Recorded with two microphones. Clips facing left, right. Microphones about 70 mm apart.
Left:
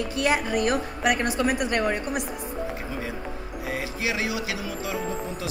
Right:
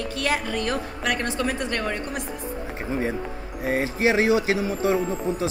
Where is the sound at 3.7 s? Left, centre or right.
Right.